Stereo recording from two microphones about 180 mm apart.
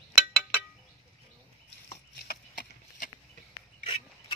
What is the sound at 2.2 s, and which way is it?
Horse, 50° left (ahead or behind).